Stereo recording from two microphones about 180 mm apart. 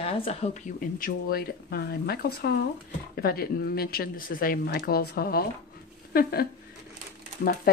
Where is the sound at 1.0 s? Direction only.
60° left (ahead or behind).